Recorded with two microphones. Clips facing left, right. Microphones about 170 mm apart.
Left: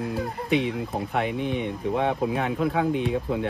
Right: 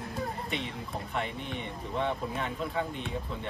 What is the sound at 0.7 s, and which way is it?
Speech, 90° left.